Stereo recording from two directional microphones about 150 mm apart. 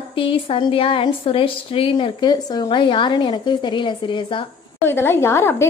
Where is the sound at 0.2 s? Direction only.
35° left (ahead or behind).